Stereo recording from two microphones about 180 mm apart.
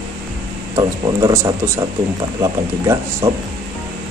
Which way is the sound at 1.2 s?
15° right (ahead or behind).